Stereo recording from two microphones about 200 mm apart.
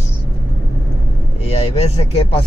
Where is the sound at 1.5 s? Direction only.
30° left (ahead or behind).